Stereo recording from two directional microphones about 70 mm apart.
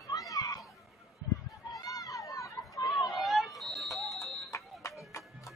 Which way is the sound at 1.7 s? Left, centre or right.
Left.